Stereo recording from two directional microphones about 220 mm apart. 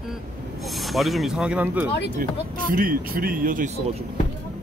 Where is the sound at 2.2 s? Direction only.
40° right (ahead or behind).